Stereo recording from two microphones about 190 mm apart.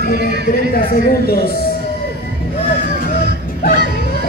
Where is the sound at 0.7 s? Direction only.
50° left (ahead or behind).